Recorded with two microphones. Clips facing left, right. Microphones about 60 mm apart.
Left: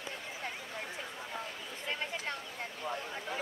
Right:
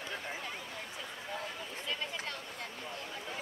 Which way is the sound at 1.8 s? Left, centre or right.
Left.